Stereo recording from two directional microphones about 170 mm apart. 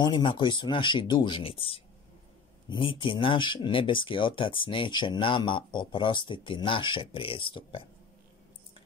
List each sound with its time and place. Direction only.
0.0 s speech: 30° left (ahead or behind)